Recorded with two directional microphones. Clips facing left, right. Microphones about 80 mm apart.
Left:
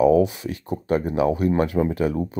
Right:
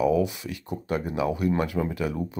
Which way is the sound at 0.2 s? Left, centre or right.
Left.